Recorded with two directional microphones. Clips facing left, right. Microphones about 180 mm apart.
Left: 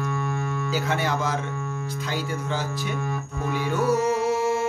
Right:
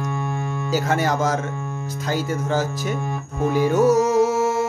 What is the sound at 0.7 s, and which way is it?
Speech, 40° right (ahead or behind).